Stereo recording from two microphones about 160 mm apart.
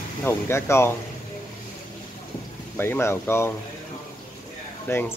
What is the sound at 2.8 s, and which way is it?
Speech, 15° left (ahead or behind).